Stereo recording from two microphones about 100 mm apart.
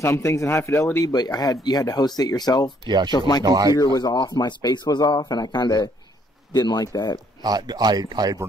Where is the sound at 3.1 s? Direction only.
40° left (ahead or behind).